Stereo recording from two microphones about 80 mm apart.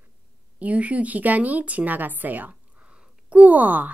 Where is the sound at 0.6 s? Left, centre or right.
Centre.